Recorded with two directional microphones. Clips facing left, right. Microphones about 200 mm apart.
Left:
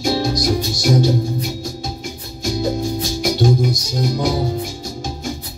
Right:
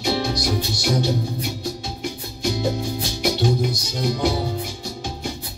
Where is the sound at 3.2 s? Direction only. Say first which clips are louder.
Left 3 dB; 45° left (ahead or behind).